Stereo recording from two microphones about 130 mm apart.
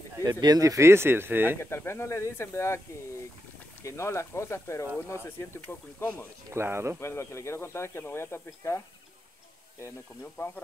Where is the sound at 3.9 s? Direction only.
20° left (ahead or behind).